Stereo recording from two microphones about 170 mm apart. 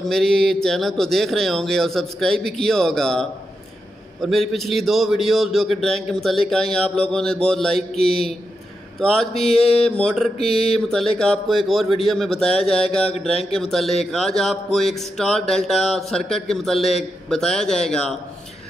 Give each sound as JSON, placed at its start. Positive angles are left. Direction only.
{"t": 0.0, "sound": "a man's voice", "side_deg": 0}
{"t": 7.9, "sound": "a man's voice", "side_deg": 35}
{"t": 9.0, "sound": "a man's voice", "side_deg": 0}
{"t": 9.5, "sound": "a man's voice", "side_deg": 35}
{"t": 9.8, "sound": "a man's voice", "side_deg": 5}
{"t": 10.3, "sound": "a man's voice", "side_deg": 35}
{"t": 10.7, "sound": "a man's voice", "side_deg": 5}
{"t": 13.6, "sound": "a man's voice", "side_deg": 0}